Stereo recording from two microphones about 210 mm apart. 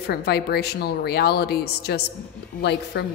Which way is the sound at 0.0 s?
50° left (ahead or behind).